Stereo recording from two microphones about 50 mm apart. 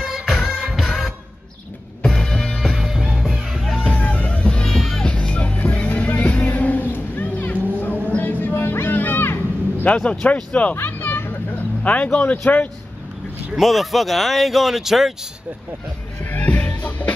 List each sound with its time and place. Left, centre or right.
0.0 s music: centre
2.0 s music: centre
2.7 s music: centre
3.9 s music: left
4.7 s music: centre
5.0 s music: centre; by 8.5 s left
8.5 s music: left
10.0 s speech: left
10.8 s music: left
11.8 s speech: left
13.6 s speech: centre
16.3 s music: left